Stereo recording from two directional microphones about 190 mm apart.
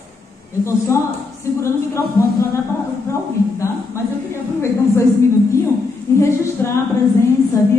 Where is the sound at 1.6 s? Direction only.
15° left (ahead or behind).